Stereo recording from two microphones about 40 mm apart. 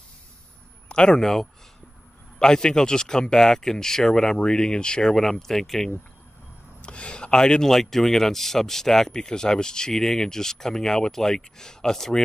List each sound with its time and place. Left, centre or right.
0.8 s speech: left
5.1 s speech: centre
6.8 s speech: left
7.6 s speech: centre